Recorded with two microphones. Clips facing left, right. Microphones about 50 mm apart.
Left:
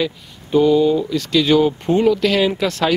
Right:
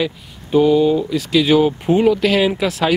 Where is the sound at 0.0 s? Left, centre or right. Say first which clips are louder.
Even; centre.